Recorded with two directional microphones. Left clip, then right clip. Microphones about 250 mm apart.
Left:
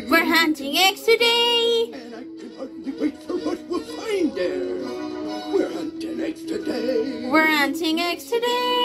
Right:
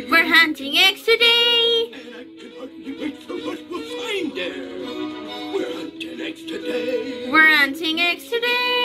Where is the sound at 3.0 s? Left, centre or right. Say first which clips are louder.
Left 4 dB; right.